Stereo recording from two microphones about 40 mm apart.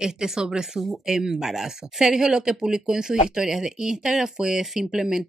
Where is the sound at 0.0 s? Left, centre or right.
Centre.